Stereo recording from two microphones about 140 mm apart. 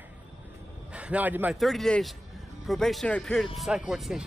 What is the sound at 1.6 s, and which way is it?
Speech, centre (ahead or behind).